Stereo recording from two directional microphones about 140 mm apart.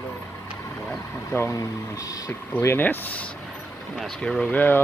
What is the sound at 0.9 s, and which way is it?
Speech, 20° left (ahead or behind).